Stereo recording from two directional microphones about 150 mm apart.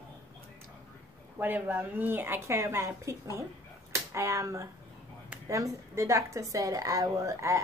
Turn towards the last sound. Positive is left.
turn(degrees=-20)  # may be behind; listen again after turning